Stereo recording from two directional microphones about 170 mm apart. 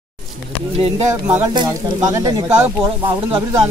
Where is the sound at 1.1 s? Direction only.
15° right (ahead or behind).